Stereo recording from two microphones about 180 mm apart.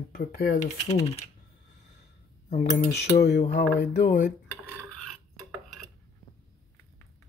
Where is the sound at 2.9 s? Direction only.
65° left (ahead or behind).